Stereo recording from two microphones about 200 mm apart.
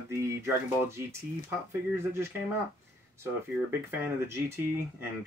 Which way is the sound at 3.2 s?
10° right (ahead or behind).